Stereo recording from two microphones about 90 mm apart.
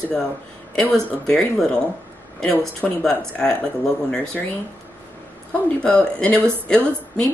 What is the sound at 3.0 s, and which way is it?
A woman's voice, 5° left (ahead or behind).